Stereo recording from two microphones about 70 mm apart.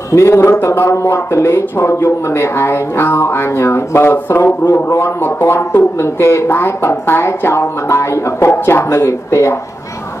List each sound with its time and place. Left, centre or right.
0.1 s speech: left